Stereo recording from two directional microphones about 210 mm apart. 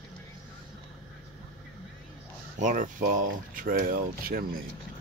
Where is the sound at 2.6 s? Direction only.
35° right (ahead or behind).